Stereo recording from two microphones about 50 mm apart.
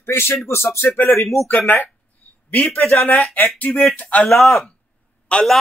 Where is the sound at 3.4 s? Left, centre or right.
Left.